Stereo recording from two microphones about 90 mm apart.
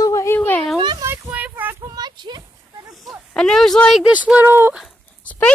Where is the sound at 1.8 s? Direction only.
45° right (ahead or behind).